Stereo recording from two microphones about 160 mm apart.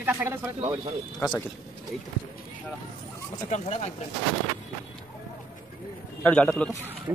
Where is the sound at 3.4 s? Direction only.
45° left (ahead or behind).